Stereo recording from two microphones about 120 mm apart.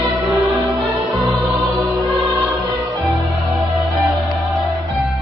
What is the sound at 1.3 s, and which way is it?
Music, centre (ahead or behind).